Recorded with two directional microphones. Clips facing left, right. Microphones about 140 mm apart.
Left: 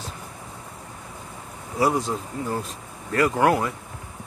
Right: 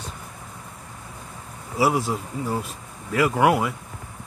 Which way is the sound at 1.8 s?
5° right (ahead or behind).